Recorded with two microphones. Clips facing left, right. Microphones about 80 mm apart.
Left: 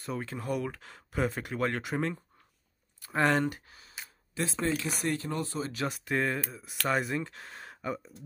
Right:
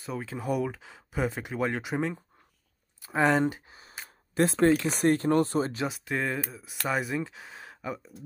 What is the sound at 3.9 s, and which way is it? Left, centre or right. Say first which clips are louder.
Speech: right 9 dB; right.